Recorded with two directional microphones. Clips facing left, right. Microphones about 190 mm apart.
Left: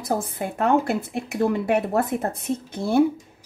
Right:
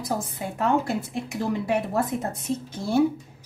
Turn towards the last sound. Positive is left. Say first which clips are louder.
# left 3 dB
turn(degrees=60)  # may be behind; listen again after turning